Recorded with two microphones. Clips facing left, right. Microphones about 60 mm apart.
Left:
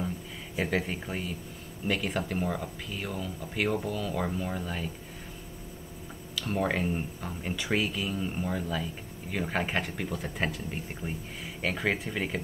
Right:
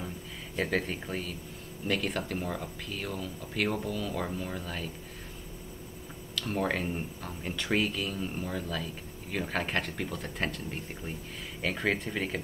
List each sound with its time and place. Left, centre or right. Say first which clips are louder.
0.6 s speech: left 1 dB; centre
6.3 s speech: left 1 dB; centre
11.0 s speech: left 2 dB; centre